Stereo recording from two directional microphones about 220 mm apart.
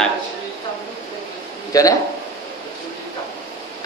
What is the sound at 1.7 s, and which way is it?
Speech, 15° left (ahead or behind).